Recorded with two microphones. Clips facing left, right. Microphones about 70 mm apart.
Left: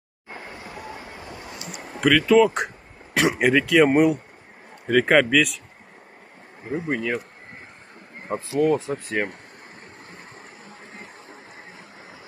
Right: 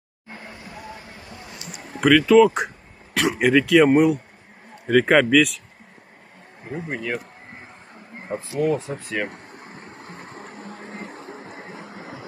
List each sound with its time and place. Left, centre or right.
2.0 s speech: centre
6.9 s speech: left
8.5 s speech: left
11.7 s vehicle: right